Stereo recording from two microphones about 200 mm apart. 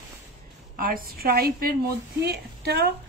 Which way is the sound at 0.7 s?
45° right (ahead or behind).